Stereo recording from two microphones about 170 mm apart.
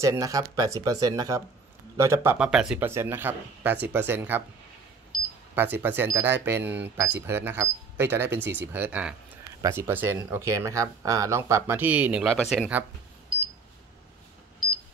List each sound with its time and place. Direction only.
0.0 s speech: 20° right (ahead or behind)
2.3 s speech: 5° right (ahead or behind)
5.5 s speech: 10° right (ahead or behind)